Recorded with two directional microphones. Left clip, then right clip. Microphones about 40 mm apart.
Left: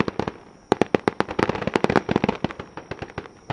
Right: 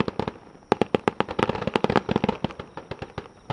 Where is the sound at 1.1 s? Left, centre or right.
Centre.